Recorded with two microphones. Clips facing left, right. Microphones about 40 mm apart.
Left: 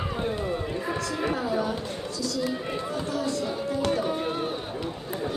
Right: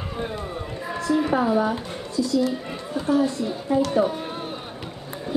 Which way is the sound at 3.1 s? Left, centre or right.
Right.